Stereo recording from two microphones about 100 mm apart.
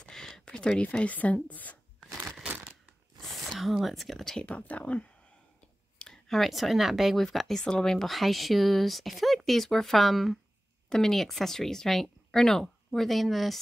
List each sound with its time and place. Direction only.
0.0 s speech: 5° left (ahead or behind)
2.4 s a sound: 15° right (ahead or behind)
3.2 s speech: centre (ahead or behind)